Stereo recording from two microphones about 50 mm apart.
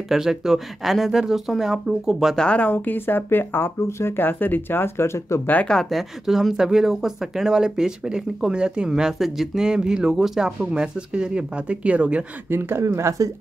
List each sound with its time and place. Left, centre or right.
0.1 s speech: centre
2.5 s speech: left
5.9 s speech: centre; by 12.3 s right
12.4 s speech: right
12.8 s speech: right